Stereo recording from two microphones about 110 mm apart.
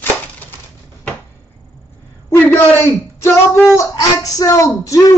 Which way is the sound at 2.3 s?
20° left (ahead or behind).